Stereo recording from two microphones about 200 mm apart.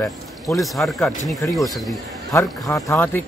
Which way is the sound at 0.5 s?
Centre (ahead or behind).